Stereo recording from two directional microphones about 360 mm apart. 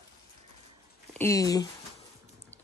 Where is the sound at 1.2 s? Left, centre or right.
Centre.